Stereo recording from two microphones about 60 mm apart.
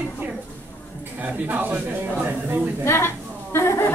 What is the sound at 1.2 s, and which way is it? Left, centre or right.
A man's voice, right.